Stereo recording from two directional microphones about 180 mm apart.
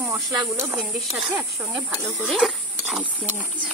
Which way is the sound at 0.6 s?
10° right (ahead or behind).